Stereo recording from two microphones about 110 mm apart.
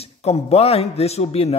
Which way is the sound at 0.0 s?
75° left (ahead or behind).